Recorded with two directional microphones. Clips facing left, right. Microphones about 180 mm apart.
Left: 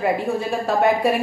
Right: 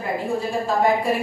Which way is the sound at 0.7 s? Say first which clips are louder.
Left 2 dB; 70° left (ahead or behind).